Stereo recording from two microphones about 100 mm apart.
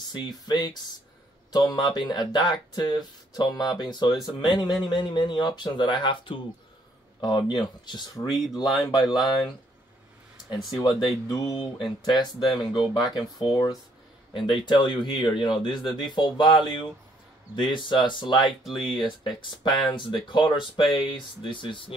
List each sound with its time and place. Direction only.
0.0 s speech: 45° left (ahead or behind)
7.2 s speech: 45° left (ahead or behind)
10.3 s a sound: 5° right (ahead or behind)
10.7 s speech: 40° left (ahead or behind)
14.6 s speech: 50° left (ahead or behind)
18.6 s speech: centre (ahead or behind)
19.6 s speech: 45° left (ahead or behind)